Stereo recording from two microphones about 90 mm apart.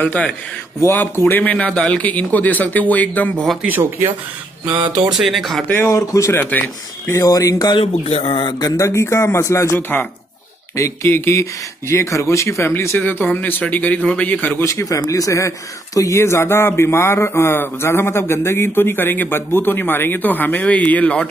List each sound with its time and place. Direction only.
0.0 s speech: 15° left (ahead or behind)
3.6 s speech: 20° right (ahead or behind)
4.6 s speech: 70° right (ahead or behind)
5.1 s speech: 5° right (ahead or behind)
5.9 s speech: 35° left (ahead or behind)
8.3 s speech: 60° left (ahead or behind)
8.6 s speech: 35° left (ahead or behind); by 14.6 s 20° left (ahead or behind)
14.6 s speech: 35° left (ahead or behind); by 21.3 s 15° left (ahead or behind)